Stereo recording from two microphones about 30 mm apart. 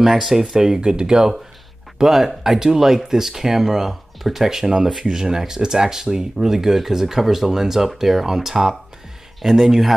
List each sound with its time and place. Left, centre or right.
0.0 s speech: centre
0.7 s speech: right
2.0 s speech: centre
4.6 s speech: right; by 9.9 s centre